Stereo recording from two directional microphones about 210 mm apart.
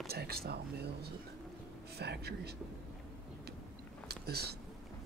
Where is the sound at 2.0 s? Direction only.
50° right (ahead or behind).